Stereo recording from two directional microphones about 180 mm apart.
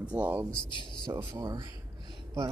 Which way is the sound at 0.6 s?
25° left (ahead or behind).